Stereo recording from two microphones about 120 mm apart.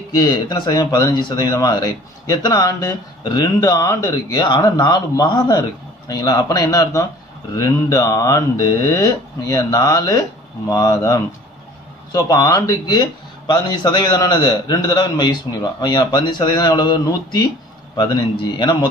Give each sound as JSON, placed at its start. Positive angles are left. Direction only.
{"t": 0.1, "sound": "speech", "side_deg": 35}